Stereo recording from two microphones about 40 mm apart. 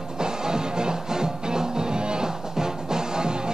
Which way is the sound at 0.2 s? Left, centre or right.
Centre.